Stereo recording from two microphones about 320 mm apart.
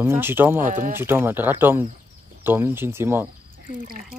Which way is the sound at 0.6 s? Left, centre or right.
Right.